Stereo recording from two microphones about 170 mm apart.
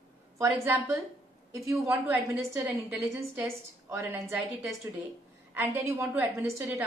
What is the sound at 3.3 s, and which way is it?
A woman's voice, 15° right (ahead or behind).